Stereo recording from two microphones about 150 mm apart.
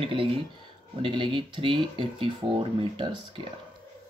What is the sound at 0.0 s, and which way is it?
Speech, 35° right (ahead or behind).